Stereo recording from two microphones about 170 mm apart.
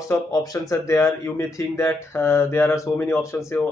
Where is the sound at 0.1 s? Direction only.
20° left (ahead or behind).